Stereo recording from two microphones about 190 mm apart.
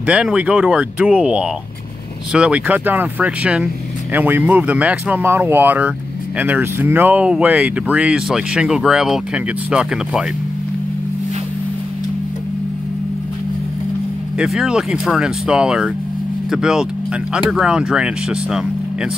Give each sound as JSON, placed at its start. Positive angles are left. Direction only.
{"t": 0.0, "sound": "speech", "side_deg": -5}
{"t": 14.4, "sound": "speech", "side_deg": -5}